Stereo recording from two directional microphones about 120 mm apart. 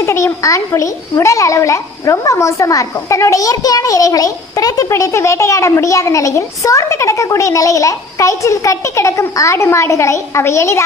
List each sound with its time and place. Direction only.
0.0 s a child's voice: 25° left (ahead or behind)